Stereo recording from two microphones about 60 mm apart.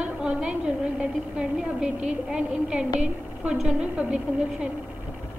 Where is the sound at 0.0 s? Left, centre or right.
Centre.